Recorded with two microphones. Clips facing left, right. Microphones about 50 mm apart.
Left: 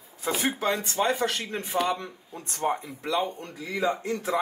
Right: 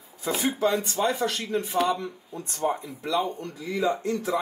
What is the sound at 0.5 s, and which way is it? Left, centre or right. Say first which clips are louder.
A man's voice: right 6 dB; left.